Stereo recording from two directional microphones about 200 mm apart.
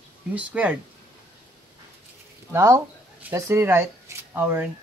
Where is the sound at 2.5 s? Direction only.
15° right (ahead or behind).